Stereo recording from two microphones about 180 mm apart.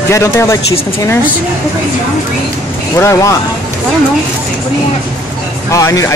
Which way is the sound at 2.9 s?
15° left (ahead or behind).